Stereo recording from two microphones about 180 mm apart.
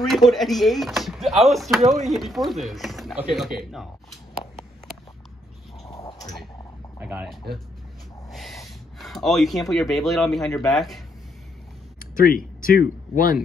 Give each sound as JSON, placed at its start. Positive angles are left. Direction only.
{"t": 0.0, "sound": "speech", "side_deg": 0}
{"t": 5.9, "sound": "a sound", "side_deg": 20}
{"t": 7.0, "sound": "speech", "side_deg": -5}
{"t": 12.0, "sound": "speech", "side_deg": 50}